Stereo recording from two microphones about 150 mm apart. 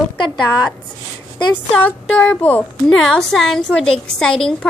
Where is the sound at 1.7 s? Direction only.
10° left (ahead or behind).